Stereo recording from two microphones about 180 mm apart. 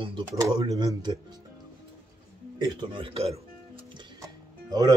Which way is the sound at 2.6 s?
30° right (ahead or behind).